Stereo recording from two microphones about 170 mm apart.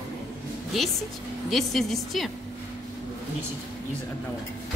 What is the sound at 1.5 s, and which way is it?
Speech, centre (ahead or behind).